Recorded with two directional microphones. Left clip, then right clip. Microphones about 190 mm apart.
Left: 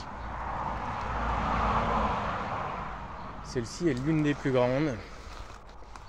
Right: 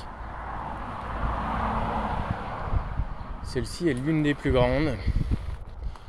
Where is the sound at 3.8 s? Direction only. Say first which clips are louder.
Right 3 dB; 20° right (ahead or behind).